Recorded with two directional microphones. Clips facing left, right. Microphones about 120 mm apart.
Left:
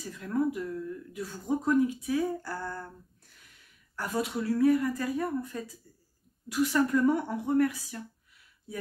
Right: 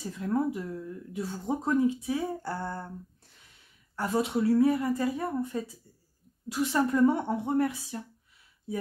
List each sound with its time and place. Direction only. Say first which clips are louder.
0.0 s speech: right 1 dB; 25° right (ahead or behind)